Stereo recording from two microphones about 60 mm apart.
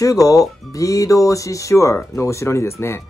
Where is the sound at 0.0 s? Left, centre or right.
Left.